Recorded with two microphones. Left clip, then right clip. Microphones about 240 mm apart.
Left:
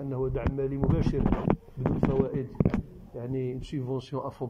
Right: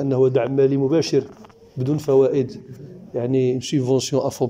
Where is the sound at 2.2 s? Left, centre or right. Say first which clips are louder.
Right 11 dB; right.